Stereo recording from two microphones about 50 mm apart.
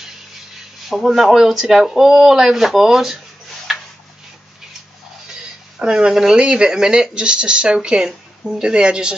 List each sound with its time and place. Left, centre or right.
0.8 s speech: centre
5.8 s speech: centre